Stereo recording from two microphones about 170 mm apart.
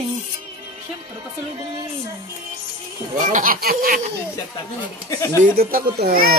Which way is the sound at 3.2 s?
50° right (ahead or behind).